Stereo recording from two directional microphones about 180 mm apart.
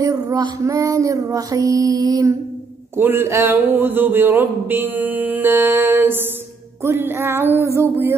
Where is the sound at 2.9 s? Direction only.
10° right (ahead or behind).